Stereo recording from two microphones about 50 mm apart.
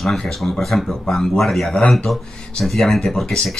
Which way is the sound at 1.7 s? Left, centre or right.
Left.